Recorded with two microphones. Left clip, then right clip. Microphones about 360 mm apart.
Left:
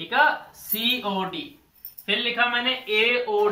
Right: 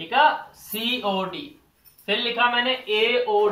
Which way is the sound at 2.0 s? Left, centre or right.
Centre.